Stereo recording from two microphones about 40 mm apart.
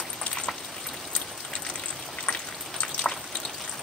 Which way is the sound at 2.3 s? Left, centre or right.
Left.